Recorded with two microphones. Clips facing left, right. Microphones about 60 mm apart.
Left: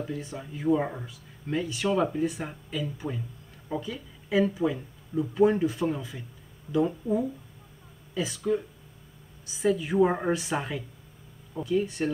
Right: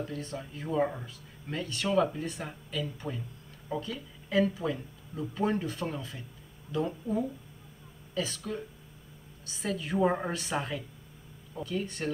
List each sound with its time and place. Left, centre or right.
0.0 s speech: centre